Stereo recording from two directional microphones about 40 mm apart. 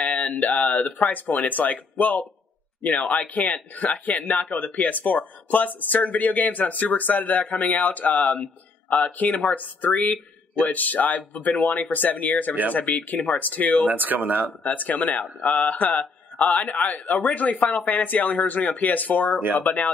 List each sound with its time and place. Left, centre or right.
0.0 s a sound: left
1.0 s speech: left
13.8 s speech: right
14.6 s speech: left